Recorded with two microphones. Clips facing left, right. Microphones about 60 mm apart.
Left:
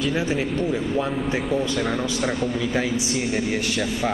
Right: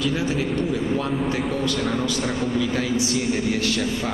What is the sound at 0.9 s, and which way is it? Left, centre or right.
A man's voice, centre.